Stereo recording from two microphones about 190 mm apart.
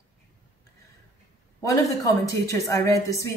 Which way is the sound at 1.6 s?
20° left (ahead or behind).